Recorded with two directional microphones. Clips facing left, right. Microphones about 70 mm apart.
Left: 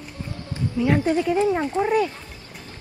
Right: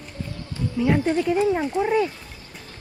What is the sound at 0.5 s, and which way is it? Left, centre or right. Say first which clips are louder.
Speech: even; centre.